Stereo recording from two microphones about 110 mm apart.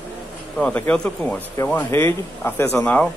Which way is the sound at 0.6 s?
15° left (ahead or behind).